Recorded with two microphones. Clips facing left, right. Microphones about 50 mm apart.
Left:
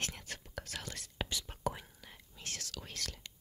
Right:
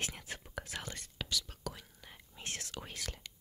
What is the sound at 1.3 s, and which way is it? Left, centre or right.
Whispering, left.